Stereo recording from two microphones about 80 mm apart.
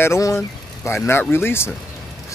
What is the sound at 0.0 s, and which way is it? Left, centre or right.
Speech, left.